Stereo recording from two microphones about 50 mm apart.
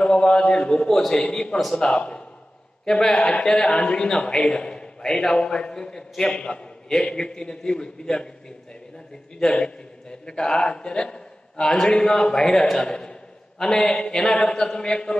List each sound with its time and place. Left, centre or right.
0.0 s a man's voice: centre
1.6 s speech: centre
1.9 s a man's voice: left
9.4 s a man's voice: centre